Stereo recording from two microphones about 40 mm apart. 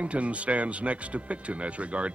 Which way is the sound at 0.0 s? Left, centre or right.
Right.